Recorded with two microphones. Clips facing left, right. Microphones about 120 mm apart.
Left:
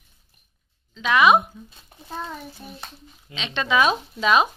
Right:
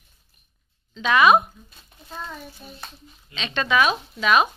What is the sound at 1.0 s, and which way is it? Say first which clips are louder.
Speech: even; 10° left (ahead or behind).